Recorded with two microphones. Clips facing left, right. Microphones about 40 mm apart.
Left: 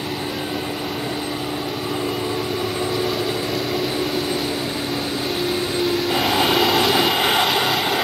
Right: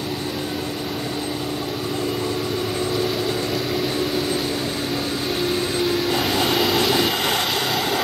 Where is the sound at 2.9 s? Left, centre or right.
Centre.